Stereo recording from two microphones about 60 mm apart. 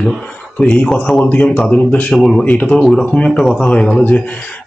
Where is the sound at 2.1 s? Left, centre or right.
Centre.